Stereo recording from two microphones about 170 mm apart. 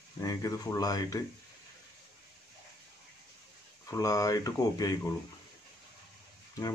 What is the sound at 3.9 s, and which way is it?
Speech, 20° left (ahead or behind).